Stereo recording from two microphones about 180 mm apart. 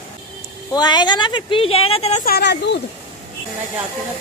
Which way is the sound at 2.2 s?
65° left (ahead or behind).